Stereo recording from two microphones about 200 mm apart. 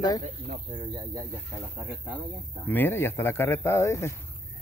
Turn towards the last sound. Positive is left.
turn(degrees=15)  # may be behind; listen again after turning